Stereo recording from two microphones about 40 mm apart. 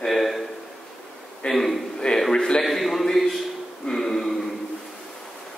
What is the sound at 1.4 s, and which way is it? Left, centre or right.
Speech, centre.